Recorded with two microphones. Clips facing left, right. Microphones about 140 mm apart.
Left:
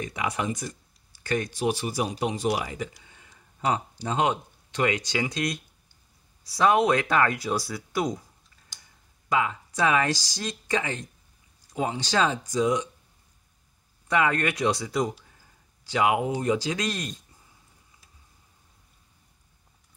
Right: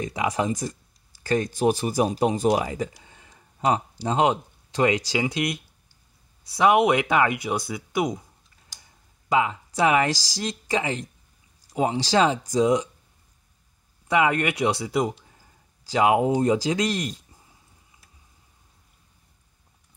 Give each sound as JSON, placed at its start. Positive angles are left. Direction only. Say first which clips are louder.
{"t": 0.0, "sound": "speech", "louder": "right 4 dB", "side_deg": -25}
{"t": 1.2, "sound": "speech", "louder": "right 5 dB", "side_deg": -35}
{"t": 2.6, "sound": "speech", "louder": "right 5 dB", "side_deg": -30}
{"t": 9.3, "sound": "speech", "louder": "right 3 dB", "side_deg": -20}
{"t": 10.1, "sound": "speech", "louder": "right 3 dB", "side_deg": -90}
{"t": 10.4, "sound": "speech", "louder": "right 3 dB", "side_deg": -25}
{"t": 14.0, "sound": "speech", "louder": "right 3 dB", "side_deg": -20}